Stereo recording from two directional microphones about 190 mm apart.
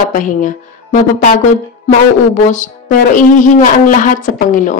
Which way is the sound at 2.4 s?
40° left (ahead or behind).